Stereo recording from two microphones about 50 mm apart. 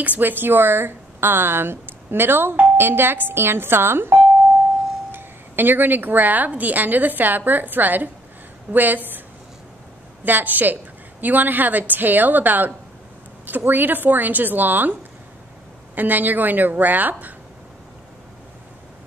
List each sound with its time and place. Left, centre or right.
0.0 s a woman's voice: right
10.2 s a woman's voice: right